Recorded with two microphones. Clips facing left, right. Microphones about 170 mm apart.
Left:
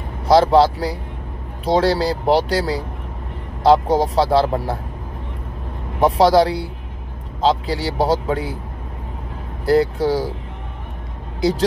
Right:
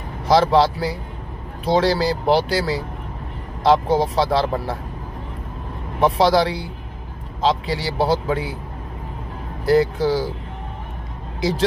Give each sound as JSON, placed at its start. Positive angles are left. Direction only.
{"t": 0.3, "sound": "speech", "side_deg": 35}
{"t": 5.9, "sound": "speech", "side_deg": 35}
{"t": 9.7, "sound": "speech", "side_deg": 35}